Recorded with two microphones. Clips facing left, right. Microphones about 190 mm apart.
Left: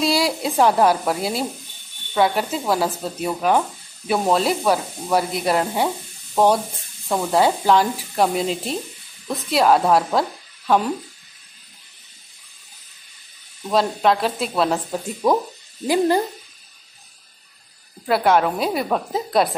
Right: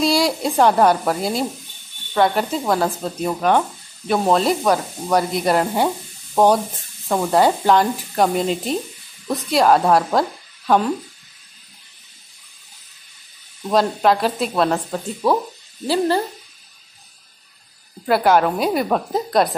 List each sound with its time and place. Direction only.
0.0 s speech: centre (ahead or behind)
13.7 s speech: centre (ahead or behind)
15.2 s speech: 15° left (ahead or behind)
18.0 s speech: centre (ahead or behind)